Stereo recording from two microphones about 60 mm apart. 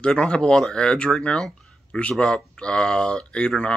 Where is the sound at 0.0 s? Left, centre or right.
Centre.